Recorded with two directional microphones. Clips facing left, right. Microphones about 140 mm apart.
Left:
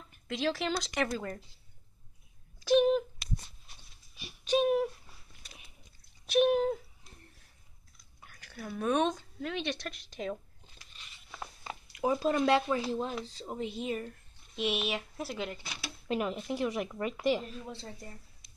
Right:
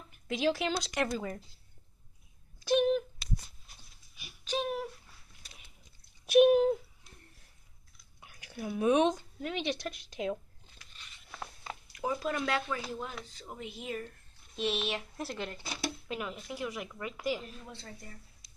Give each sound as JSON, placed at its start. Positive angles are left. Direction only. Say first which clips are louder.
{"t": 0.3, "sound": "speech", "louder": "right 1 dB", "side_deg": -5}
{"t": 4.5, "sound": "speech", "louder": "left 7 dB", "side_deg": 20}
{"t": 6.2, "sound": "speech", "louder": "right 4 dB", "side_deg": -10}
{"t": 8.2, "sound": "speech", "louder": "right 3 dB", "side_deg": -10}
{"t": 11.9, "sound": "speech", "louder": "left 5 dB", "side_deg": 25}
{"t": 16.1, "sound": "speech", "louder": "left 6 dB", "side_deg": 30}